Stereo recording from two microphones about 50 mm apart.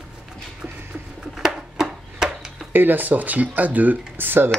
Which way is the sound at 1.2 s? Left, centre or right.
Centre.